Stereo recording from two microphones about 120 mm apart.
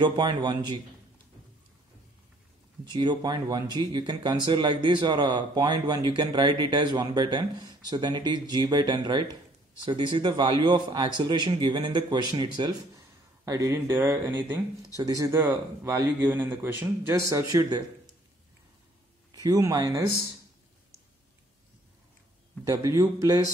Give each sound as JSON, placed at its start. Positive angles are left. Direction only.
{"t": 0.0, "sound": "speech", "side_deg": -40}
{"t": 2.8, "sound": "speech", "side_deg": -40}
{"t": 15.0, "sound": "speech", "side_deg": -30}
{"t": 19.3, "sound": "speech", "side_deg": -30}
{"t": 22.7, "sound": "speech", "side_deg": -25}